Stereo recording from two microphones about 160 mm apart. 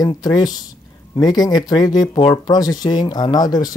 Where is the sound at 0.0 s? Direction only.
25° left (ahead or behind).